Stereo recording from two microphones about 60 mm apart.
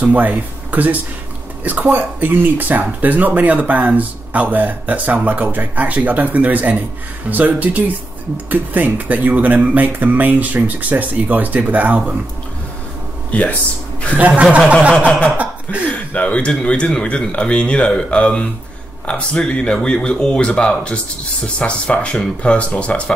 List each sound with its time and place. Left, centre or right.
0.0 s speech: right
13.3 s speech: left
14.1 s speech: right
14.9 s speech: centre